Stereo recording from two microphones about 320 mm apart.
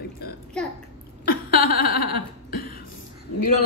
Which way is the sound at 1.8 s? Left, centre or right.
Left.